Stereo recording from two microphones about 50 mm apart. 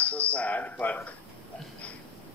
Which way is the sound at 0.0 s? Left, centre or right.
Left.